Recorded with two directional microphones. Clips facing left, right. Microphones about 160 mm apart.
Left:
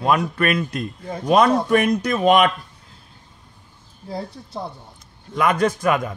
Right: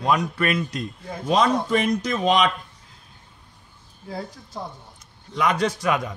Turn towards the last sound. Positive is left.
turn(degrees=50)  # may be behind; listen again after turning